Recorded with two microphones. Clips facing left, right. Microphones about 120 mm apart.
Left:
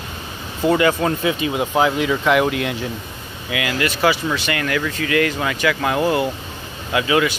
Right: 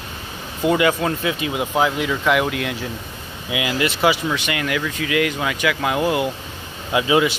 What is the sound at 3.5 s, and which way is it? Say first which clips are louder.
Speech: even; 20° right (ahead or behind).